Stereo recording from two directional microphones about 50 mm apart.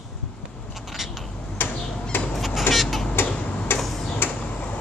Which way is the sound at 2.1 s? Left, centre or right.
Left.